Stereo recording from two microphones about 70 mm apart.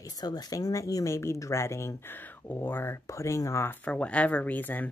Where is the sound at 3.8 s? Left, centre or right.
Centre.